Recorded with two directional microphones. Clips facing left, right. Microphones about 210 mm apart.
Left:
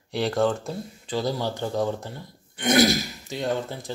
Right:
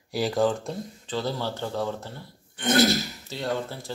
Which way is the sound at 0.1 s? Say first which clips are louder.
Left 1 dB; centre (ahead or behind).